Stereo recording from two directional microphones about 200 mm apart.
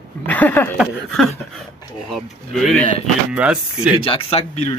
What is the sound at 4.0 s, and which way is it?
Speech, 25° left (ahead or behind).